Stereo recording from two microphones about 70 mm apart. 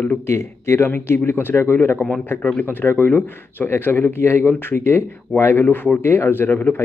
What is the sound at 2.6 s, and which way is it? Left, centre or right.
Speech, left.